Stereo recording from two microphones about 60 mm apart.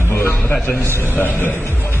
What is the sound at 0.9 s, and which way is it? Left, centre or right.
Speech, left.